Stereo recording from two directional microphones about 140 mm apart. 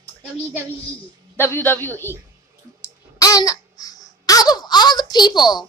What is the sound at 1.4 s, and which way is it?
Speech, 15° left (ahead or behind).